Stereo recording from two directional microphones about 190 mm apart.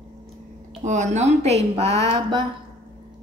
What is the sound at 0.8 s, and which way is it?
A woman's voice, 40° right (ahead or behind).